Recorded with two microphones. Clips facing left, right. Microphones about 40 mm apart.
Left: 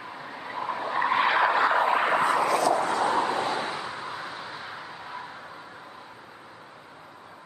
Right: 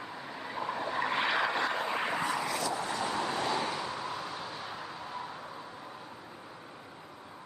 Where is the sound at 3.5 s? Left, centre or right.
Left.